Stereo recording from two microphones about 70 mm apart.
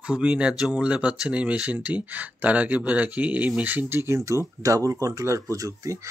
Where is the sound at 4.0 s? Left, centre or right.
Right.